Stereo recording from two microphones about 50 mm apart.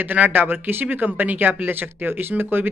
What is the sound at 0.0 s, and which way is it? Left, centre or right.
Speech, right.